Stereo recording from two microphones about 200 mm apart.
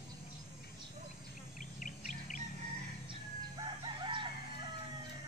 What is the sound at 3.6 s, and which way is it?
Crowing, 25° right (ahead or behind).